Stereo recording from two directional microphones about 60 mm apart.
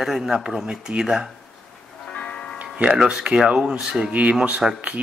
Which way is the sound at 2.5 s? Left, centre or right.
Right.